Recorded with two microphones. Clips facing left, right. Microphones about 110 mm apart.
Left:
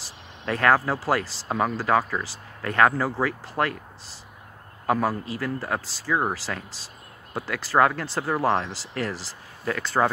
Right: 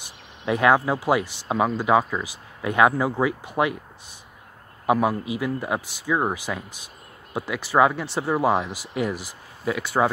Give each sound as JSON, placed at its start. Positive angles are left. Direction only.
{"t": 0.5, "sound": "speech", "side_deg": -15}
{"t": 1.2, "sound": "speech", "side_deg": 90}
{"t": 1.5, "sound": "speech", "side_deg": -10}
{"t": 4.8, "sound": "speech", "side_deg": -10}